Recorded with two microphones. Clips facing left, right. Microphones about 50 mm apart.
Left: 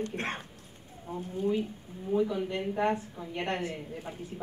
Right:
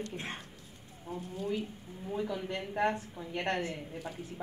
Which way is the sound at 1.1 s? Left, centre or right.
Left.